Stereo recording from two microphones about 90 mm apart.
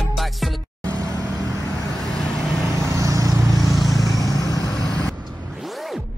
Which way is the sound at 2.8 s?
35° right (ahead or behind).